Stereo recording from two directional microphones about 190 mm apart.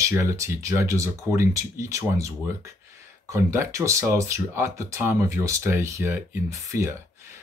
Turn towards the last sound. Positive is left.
turn(degrees=-15)  # may be behind; listen again after turning